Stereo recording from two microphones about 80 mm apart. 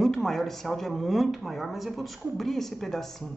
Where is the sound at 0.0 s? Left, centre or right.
Centre.